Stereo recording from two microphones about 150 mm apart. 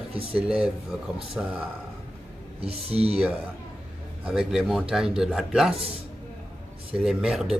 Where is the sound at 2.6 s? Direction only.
40° right (ahead or behind).